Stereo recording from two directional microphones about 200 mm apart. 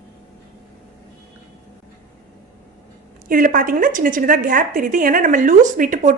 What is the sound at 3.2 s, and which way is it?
A woman's voice, 40° right (ahead or behind).